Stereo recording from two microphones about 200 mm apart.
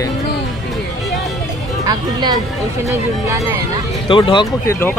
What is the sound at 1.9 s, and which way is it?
Speech, 20° right (ahead or behind).